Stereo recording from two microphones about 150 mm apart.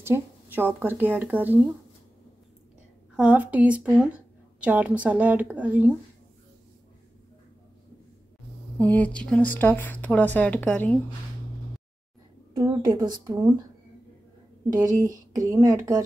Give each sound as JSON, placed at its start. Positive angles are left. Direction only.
{"t": 0.0, "sound": "speech", "side_deg": -15}
{"t": 3.2, "sound": "a woman's voice", "side_deg": -10}
{"t": 8.7, "sound": "speech", "side_deg": 10}
{"t": 12.5, "sound": "speech", "side_deg": -25}
{"t": 14.8, "sound": "speech", "side_deg": -25}